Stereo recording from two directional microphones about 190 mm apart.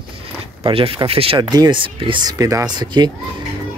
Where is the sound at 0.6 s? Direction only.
30° right (ahead or behind).